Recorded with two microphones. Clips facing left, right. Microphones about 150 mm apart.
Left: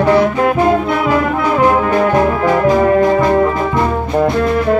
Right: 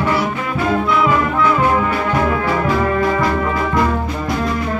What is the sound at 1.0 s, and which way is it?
Music, 45° left (ahead or behind).